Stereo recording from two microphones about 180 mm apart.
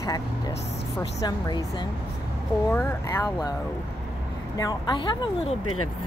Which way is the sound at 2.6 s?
10° left (ahead or behind).